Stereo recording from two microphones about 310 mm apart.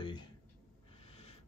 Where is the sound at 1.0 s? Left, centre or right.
Centre.